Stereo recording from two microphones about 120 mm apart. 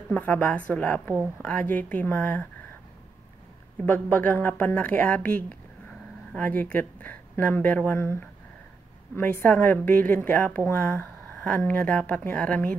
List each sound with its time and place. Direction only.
0.1 s speech: 15° left (ahead or behind)
3.8 s speech: 15° left (ahead or behind)